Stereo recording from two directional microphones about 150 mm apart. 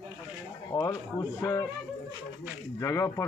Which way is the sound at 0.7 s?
25° left (ahead or behind).